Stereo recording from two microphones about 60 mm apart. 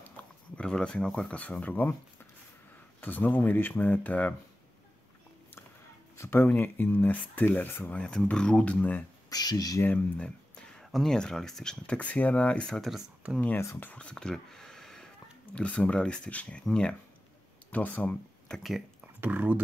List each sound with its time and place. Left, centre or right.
0.6 s speech: centre; by 2.0 s left
3.0 s speech: left
6.1 s speech: left
7.9 s speech: centre
9.3 s speech: left
10.1 s a sound: centre
10.8 s speech: centre
13.9 s speech: centre
15.5 s speech: centre
17.6 s speech: left
19.2 s speech: right